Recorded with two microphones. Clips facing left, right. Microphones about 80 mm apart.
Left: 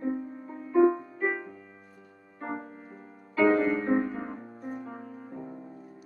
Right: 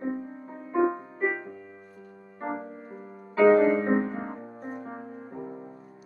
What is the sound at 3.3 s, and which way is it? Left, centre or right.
Music, right.